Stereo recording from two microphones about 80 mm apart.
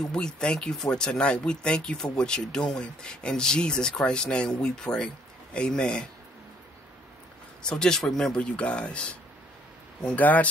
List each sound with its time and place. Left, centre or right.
0.1 s speech: centre
7.6 s speech: centre
10.1 s speech: left